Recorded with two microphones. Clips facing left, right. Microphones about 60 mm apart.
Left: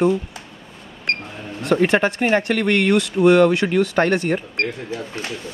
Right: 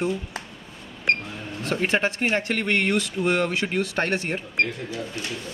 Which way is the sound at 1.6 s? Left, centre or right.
Left.